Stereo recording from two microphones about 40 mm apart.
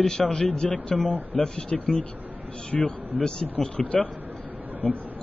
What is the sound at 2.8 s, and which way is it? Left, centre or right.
Speech, centre.